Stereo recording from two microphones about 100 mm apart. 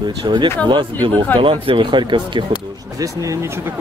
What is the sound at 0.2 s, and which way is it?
Speech, 50° right (ahead or behind).